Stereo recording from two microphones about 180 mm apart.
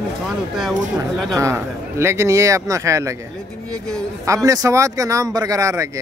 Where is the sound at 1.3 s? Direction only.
15° right (ahead or behind).